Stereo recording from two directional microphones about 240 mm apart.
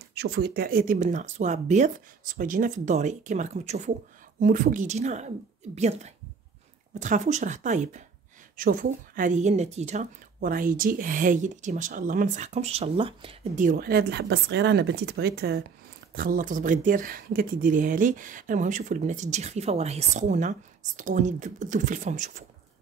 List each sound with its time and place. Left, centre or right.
0.1 s a woman's voice: right